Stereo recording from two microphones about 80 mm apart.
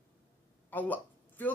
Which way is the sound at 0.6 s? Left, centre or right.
Left.